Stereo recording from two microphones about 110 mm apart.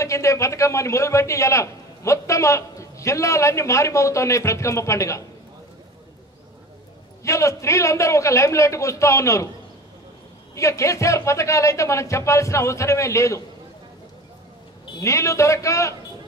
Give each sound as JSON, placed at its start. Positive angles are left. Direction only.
{"t": 0.0, "sound": "a man's voice", "side_deg": 30}
{"t": 7.2, "sound": "a man's voice", "side_deg": 30}
{"t": 10.5, "sound": "a man's voice", "side_deg": 25}
{"t": 15.0, "sound": "a man's voice", "side_deg": 30}